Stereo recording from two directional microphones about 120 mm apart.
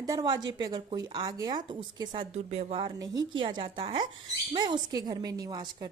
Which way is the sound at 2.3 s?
60° right (ahead or behind).